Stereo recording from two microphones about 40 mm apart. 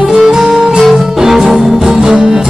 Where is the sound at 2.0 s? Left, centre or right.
Right.